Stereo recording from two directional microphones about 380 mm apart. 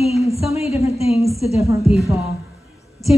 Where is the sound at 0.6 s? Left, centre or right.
Centre.